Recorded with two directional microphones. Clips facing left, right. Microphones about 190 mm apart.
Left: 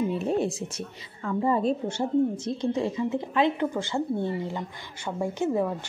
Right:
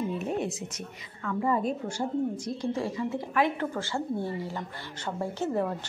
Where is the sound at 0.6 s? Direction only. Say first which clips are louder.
Left 4 dB; 30° left (ahead or behind).